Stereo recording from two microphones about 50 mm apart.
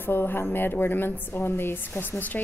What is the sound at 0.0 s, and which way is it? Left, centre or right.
A woman's voice, left.